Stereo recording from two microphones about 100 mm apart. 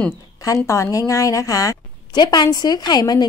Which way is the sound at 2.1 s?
45° left (ahead or behind).